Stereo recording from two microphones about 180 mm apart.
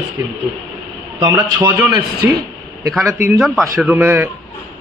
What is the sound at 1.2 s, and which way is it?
A man's voice, 20° right (ahead or behind).